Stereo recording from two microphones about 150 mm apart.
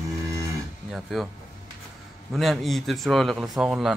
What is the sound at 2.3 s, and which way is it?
Speech, centre (ahead or behind).